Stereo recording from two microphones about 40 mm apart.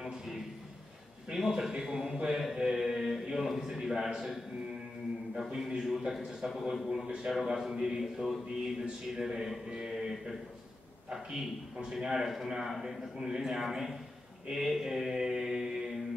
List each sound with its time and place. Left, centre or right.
1.3 s a man's voice: centre
1.7 s a man's voice: centre
2.2 s mantra: centre
5.5 s mantra: centre
6.7 s a man's voice: centre
7.2 s mantra: centre
11.1 s a man's voice: centre
12.1 s mantra: centre